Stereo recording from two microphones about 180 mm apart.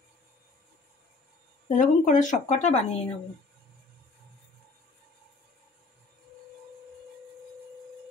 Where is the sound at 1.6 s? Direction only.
45° left (ahead or behind).